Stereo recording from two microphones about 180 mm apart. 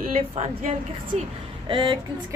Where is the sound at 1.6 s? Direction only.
25° right (ahead or behind).